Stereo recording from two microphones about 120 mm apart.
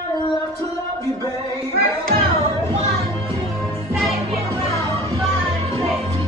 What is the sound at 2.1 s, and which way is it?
Music, 55° right (ahead or behind).